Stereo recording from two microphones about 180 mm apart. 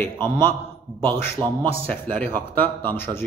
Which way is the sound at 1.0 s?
30° right (ahead or behind).